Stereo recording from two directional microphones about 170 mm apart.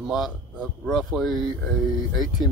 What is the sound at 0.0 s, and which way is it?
Speech, centre (ahead or behind).